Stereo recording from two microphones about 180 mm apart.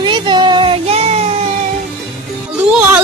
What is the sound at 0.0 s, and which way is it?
Child singing, 25° right (ahead or behind).